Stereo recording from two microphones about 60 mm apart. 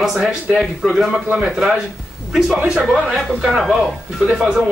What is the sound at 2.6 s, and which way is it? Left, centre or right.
Speech, centre.